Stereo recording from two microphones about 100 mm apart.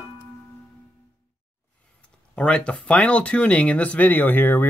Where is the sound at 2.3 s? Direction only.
10° left (ahead or behind).